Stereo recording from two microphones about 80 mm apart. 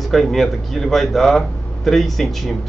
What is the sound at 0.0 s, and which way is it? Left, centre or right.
Speech, centre.